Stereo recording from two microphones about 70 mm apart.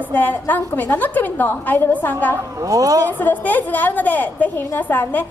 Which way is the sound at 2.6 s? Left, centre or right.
Right.